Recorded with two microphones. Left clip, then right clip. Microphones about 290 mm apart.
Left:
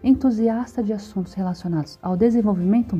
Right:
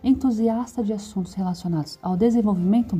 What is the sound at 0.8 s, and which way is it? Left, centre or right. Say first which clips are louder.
Speech: left 1 dB; right.